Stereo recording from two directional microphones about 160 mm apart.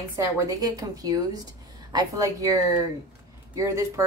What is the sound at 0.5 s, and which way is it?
Speech, 25° right (ahead or behind).